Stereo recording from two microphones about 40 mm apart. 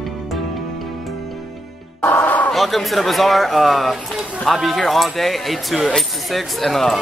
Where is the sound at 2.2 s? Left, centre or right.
Left.